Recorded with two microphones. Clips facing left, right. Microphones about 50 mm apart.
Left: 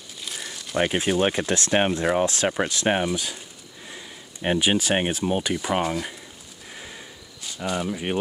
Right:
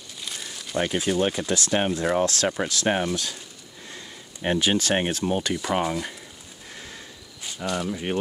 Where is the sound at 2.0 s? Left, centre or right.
Centre.